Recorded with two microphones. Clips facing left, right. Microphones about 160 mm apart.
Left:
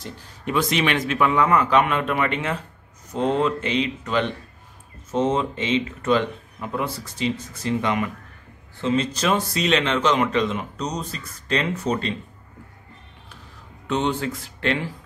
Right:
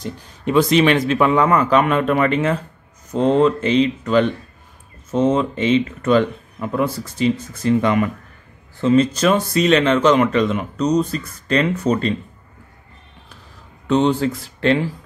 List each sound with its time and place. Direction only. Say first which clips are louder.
0.5 s a man's voice: right 8 dB; 35° right (ahead or behind); by 12.1 s 50° right (ahead or behind)
13.8 s a man's voice: right 7 dB; 35° right (ahead or behind)